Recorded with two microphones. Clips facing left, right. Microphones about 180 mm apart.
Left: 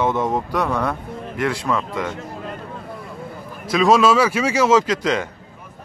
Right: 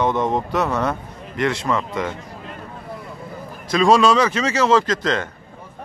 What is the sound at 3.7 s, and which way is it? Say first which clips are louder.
A man's voice: even; 5° left (ahead or behind).